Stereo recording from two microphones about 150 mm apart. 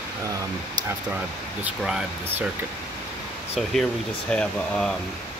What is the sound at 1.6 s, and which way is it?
Speech, 5° right (ahead or behind).